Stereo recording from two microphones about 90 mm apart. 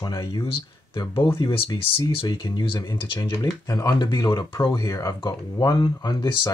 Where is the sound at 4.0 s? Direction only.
55° left (ahead or behind).